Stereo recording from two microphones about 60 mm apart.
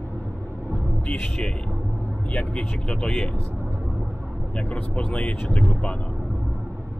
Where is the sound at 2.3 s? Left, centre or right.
Centre.